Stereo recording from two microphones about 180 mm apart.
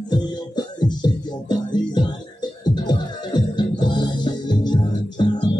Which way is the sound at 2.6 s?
25° left (ahead or behind).